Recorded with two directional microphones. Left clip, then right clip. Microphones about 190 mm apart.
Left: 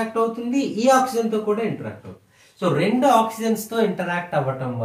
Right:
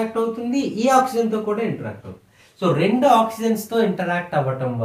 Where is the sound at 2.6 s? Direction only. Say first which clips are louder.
Right 1 dB; 20° right (ahead or behind).